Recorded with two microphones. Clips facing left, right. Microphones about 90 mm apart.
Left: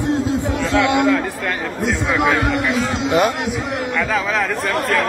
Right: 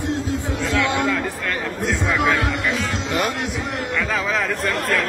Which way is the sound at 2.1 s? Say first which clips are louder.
Left 2 dB; 15° left (ahead or behind).